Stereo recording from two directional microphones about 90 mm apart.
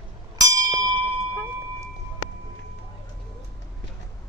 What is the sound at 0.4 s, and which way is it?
Bell, 40° right (ahead or behind).